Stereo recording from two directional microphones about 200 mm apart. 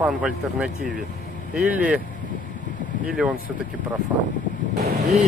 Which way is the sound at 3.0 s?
5° right (ahead or behind).